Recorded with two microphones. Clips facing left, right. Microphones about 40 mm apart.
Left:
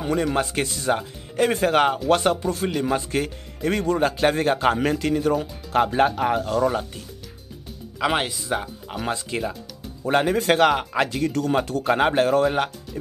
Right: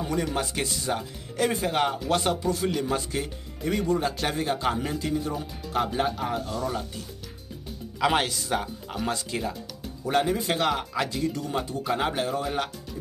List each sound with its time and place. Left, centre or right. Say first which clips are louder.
0.0 s speech: left 5 dB; left
1.6 s speech: left 6 dB; left
3.2 s speech: left 6 dB; left
4.7 s a man's voice: left 6 dB; left
5.7 s speech: left 7 dB; left
8.0 s speech: left 1 dB; centre
9.0 s speech: left 3 dB; left
10.3 s speech: left 8 dB; left
10.7 s speech: left 5 dB; left
11.8 s speech: left 7 dB; left